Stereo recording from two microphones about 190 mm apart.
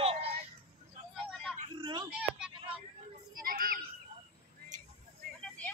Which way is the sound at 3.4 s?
50° right (ahead or behind).